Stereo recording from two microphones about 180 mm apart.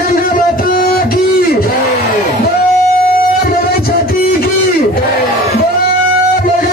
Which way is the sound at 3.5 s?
55° left (ahead or behind).